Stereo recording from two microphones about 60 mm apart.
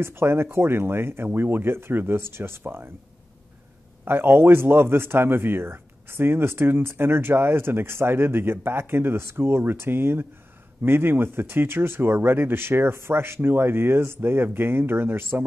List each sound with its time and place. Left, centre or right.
0.0 s a man's voice: right
4.0 s a man's voice: right